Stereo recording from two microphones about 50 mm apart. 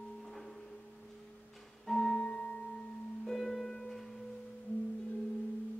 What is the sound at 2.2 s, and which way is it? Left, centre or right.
Music, left.